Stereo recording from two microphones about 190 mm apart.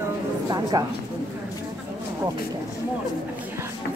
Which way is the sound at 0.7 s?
20° right (ahead or behind).